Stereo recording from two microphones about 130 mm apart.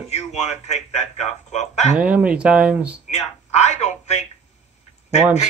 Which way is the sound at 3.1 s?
60° left (ahead or behind).